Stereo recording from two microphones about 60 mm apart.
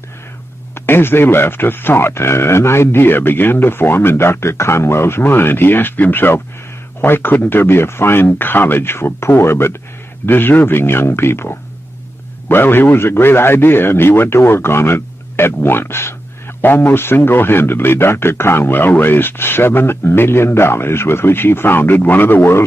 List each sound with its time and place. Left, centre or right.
0.7 s a man's voice: left